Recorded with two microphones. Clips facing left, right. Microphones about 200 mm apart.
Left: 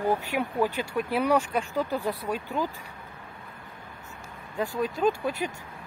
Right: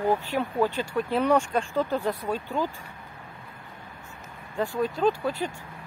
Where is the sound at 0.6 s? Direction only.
10° left (ahead or behind).